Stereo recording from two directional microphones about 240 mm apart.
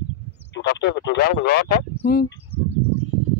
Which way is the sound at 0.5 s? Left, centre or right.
Left.